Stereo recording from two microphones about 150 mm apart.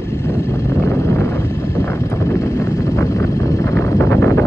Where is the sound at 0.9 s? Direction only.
20° left (ahead or behind).